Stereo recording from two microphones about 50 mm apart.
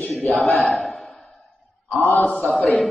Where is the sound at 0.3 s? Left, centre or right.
Centre.